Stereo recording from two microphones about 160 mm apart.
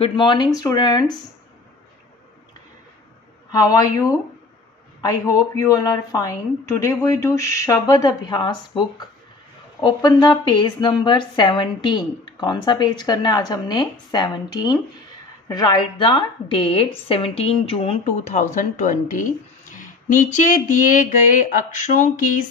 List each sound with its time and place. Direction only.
0.0 s a woman's voice: 30° left (ahead or behind)
3.5 s a woman's voice: 20° left (ahead or behind); by 22.1 s 50° left (ahead or behind)